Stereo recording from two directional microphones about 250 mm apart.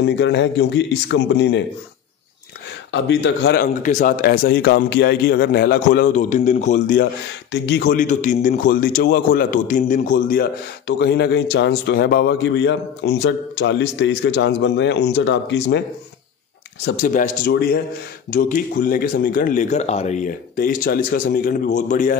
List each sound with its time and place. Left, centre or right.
0.0 s speech: left
2.9 s a man's voice: left
7.5 s a man's voice: left
16.8 s a man's voice: left